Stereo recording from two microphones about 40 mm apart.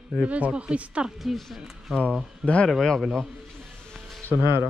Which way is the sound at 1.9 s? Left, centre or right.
Centre.